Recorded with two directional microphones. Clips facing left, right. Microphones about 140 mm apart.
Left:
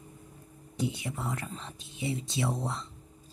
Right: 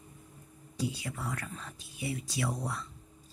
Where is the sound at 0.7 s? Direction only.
20° left (ahead or behind).